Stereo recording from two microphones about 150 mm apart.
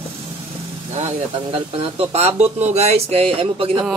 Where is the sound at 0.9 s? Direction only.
50° right (ahead or behind).